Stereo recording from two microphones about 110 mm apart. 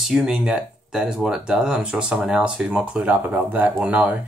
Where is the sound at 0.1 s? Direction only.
5° right (ahead or behind).